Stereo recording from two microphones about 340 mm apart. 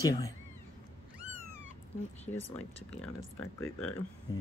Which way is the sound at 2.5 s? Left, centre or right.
Centre.